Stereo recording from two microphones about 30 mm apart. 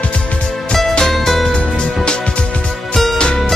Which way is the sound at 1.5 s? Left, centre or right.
Left.